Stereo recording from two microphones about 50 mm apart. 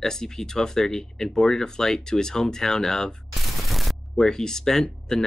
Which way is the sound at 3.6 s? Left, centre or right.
Centre.